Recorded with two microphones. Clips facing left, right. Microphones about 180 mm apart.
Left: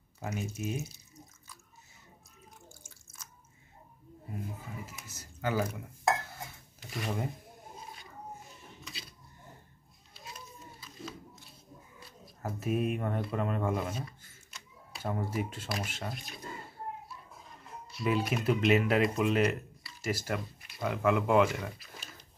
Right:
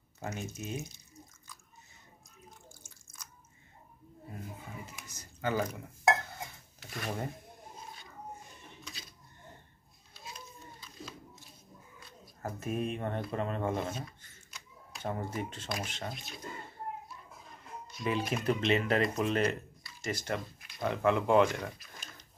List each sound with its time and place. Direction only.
0.2 s speech: 5° left (ahead or behind)
2.8 s drip: 5° left (ahead or behind)
4.8 s dishes: 5° left (ahead or behind)
6.9 s speech: 10° left (ahead or behind)
12.4 s speech: 5° left (ahead or behind)
17.8 s speech: 5° left (ahead or behind)